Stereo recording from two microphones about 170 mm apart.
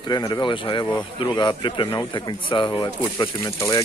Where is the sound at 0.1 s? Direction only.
25° left (ahead or behind).